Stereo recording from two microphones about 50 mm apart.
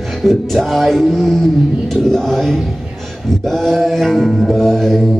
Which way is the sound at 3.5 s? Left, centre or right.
Centre.